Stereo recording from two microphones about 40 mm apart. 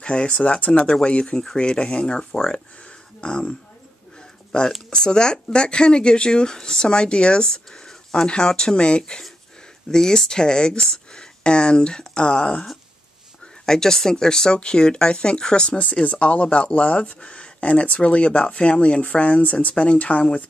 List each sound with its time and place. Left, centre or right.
0.0 s speech: left
4.5 s speech: left
13.7 s speech: centre
15.8 s speech: left